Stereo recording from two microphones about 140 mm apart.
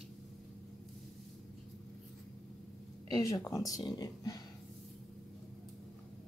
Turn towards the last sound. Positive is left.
turn(degrees=30)  # may be behind; listen again after turning